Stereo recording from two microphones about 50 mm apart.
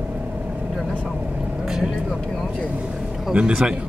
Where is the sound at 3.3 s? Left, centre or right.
Right.